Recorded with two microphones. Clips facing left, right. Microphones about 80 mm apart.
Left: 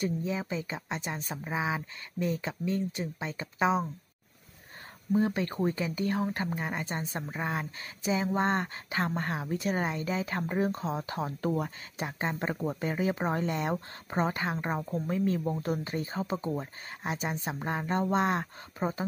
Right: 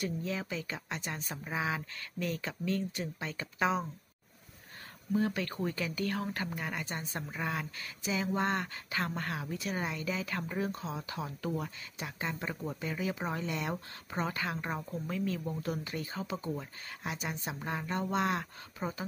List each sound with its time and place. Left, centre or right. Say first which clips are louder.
0.2 s speech: left 4 dB; left
5.1 s speech: left 4 dB; left